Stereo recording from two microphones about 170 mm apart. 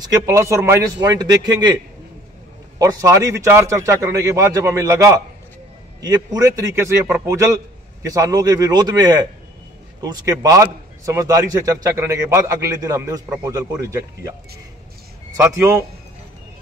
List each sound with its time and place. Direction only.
0.0 s a man's voice: 20° right (ahead or behind)
2.8 s a man's voice: 20° right (ahead or behind)
15.3 s a man's voice: 15° right (ahead or behind)